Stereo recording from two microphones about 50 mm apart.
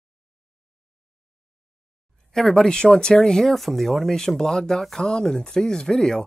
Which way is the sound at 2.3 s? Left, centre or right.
Centre.